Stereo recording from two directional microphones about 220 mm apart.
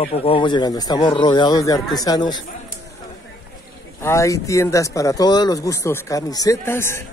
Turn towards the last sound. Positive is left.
turn(degrees=10)  # may be behind; listen again after turning